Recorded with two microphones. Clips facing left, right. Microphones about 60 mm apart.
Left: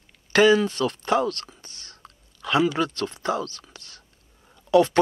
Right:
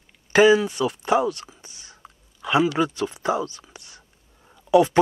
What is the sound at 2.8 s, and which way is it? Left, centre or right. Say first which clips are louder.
Whispering: right 2 dB; centre.